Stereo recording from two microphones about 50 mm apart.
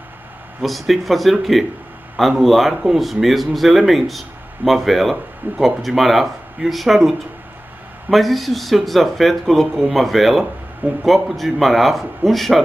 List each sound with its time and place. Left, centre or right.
0.6 s speech: centre
5.4 s speech: right
5.8 s speech: centre
10.8 s speech: right
11.2 s speech: centre